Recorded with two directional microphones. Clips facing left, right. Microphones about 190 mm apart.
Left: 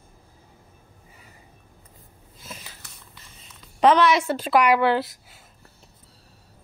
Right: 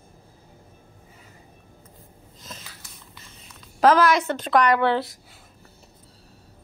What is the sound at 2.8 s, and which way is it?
Whispering, 65° left (ahead or behind).